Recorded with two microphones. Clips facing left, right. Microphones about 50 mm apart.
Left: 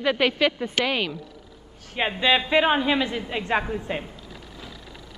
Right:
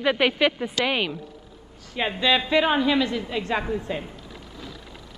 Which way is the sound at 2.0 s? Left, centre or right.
Centre.